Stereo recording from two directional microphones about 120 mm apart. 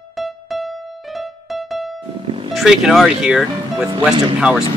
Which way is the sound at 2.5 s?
Centre (ahead or behind).